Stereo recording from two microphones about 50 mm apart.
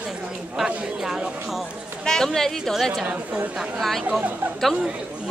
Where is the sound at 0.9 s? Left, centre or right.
Centre.